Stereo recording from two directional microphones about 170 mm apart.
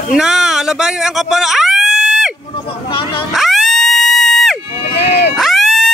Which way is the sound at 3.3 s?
Centre (ahead or behind).